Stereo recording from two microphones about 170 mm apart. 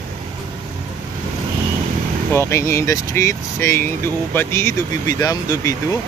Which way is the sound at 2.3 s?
15° left (ahead or behind).